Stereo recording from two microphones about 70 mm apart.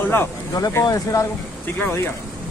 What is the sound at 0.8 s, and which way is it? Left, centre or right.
Speech, left.